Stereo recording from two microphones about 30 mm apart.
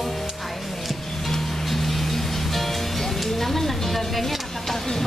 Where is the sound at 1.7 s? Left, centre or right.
Centre.